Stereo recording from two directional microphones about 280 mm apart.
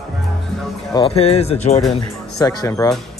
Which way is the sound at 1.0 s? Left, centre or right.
Left.